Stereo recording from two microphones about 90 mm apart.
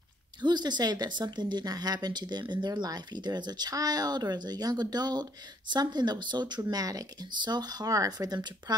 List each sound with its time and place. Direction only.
0.4 s a woman's voice: 55° right (ahead or behind)
6.6 s a woman's voice: 45° right (ahead or behind)